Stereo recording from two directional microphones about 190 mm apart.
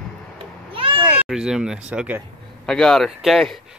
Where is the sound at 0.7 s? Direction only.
25° right (ahead or behind).